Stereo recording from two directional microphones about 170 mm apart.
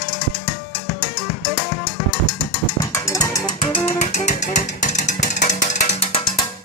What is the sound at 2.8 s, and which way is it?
Music, 20° left (ahead or behind).